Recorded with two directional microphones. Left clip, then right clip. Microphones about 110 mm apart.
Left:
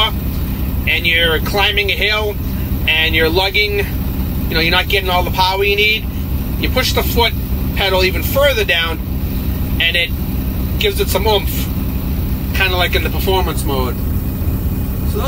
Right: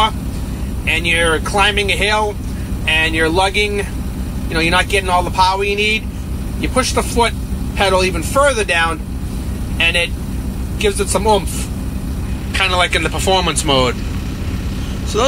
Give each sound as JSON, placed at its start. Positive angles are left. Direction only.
{"t": 0.8, "sound": "speech", "side_deg": 0}
{"t": 12.5, "sound": "speech", "side_deg": 0}